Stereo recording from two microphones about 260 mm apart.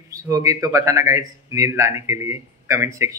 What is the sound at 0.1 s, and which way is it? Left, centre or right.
Speech, centre.